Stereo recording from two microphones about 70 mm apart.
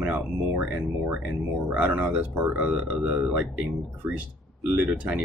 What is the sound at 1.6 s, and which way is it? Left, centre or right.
Speech, right.